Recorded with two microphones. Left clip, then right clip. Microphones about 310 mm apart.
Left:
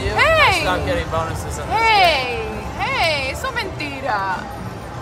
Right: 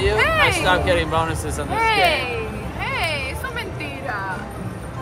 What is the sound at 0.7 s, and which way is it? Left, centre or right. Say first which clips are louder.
Speech: right 2 dB; right.